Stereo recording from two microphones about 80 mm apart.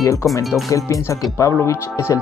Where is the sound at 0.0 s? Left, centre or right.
Left.